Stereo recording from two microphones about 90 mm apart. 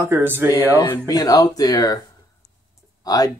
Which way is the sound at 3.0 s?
45° left (ahead or behind).